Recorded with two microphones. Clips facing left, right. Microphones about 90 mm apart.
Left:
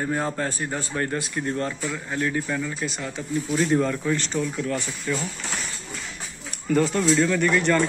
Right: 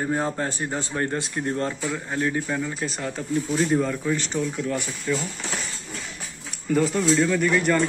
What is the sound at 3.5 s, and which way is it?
Speech, 10° right (ahead or behind).